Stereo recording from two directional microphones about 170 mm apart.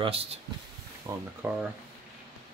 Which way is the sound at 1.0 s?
15° right (ahead or behind).